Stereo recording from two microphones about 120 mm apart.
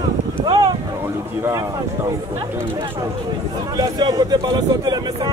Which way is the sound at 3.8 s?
30° right (ahead or behind).